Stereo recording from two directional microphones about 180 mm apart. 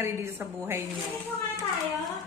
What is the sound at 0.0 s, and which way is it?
Speech, 15° right (ahead or behind).